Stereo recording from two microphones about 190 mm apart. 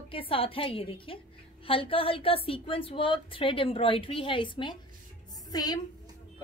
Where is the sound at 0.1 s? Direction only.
30° left (ahead or behind).